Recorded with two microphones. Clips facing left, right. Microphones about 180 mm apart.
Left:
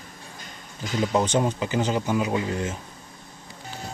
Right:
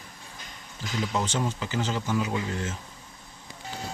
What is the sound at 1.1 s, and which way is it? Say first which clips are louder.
Speech: left 7 dB; 20° left (ahead or behind).